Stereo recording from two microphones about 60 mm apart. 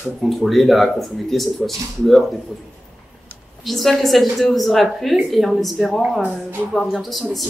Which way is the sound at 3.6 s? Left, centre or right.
Centre.